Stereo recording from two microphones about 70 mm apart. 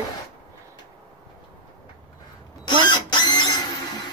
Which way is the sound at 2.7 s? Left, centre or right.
Left.